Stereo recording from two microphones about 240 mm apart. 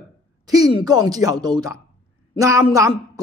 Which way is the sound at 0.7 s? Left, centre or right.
Centre.